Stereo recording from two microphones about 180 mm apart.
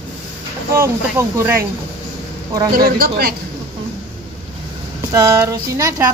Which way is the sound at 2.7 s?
50° right (ahead or behind).